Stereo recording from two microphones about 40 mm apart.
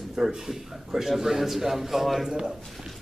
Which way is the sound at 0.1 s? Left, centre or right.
Centre.